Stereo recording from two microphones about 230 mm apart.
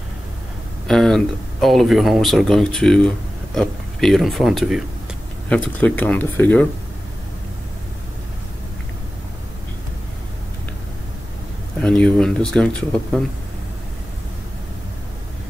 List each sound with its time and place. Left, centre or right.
0.8 s speech: centre
11.8 s speech: centre